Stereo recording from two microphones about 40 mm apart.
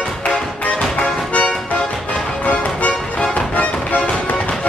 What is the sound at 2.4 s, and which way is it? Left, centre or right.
Music, left.